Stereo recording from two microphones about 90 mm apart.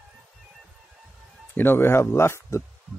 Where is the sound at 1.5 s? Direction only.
25° left (ahead or behind).